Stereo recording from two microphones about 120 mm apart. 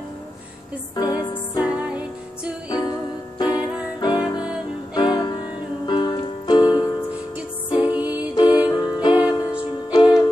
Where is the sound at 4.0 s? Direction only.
35° left (ahead or behind).